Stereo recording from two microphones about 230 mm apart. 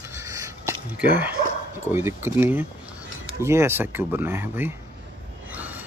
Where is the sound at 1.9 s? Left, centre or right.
Centre.